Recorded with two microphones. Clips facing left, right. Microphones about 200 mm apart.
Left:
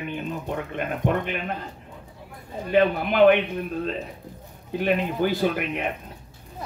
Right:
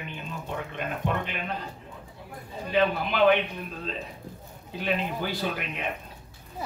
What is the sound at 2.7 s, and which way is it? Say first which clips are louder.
Speech: left 5 dB; 50° left (ahead or behind).